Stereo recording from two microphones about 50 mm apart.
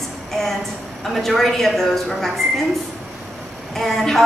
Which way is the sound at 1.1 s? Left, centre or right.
Centre.